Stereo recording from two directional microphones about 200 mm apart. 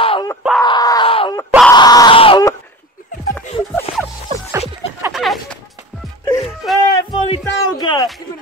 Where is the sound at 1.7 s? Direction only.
20° left (ahead or behind).